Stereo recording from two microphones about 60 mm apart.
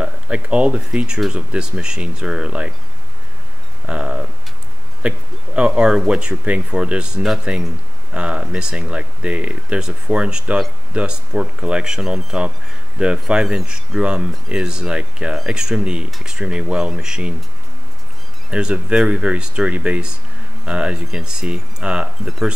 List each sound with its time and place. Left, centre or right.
0.0 s speech: centre
3.8 s a sound: centre
5.0 s speech: centre
18.5 s speech: centre